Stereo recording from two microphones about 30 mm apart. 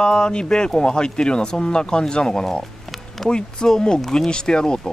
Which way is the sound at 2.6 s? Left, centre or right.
Centre.